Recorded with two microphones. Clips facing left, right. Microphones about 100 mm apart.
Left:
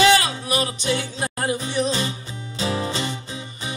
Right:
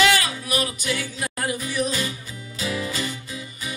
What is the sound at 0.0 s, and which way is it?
Music, 30° left (ahead or behind).